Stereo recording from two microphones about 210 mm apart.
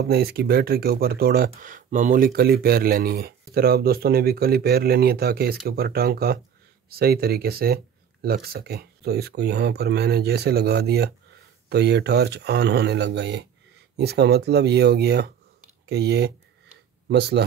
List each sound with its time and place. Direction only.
0.0 s speech: 50° right (ahead or behind)